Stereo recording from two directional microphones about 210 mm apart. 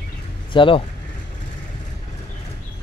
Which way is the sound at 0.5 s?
25° left (ahead or behind).